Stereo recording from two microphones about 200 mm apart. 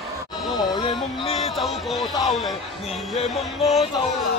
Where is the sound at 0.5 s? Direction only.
20° left (ahead or behind).